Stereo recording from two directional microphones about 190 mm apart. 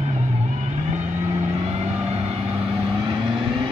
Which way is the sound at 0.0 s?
35° right (ahead or behind).